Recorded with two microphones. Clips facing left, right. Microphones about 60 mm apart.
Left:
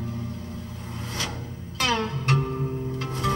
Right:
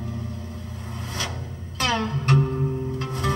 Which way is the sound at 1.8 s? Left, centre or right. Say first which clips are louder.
Right 1 dB; right.